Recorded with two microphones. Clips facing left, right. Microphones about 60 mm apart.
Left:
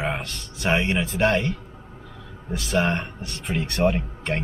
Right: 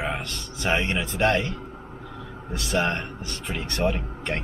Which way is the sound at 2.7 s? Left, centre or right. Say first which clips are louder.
Left 2 dB; centre.